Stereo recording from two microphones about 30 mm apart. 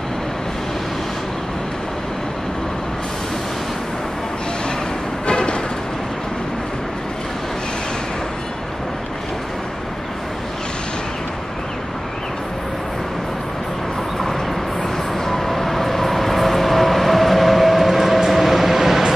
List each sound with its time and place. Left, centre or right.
5.2 s music: left
14.8 s vehicle: centre